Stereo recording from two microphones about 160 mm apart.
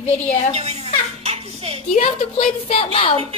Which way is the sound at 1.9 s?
45° left (ahead or behind).